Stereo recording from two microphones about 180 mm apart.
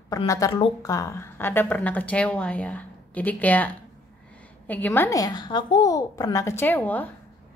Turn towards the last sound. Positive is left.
turn(degrees=10)  # may be behind; listen again after turning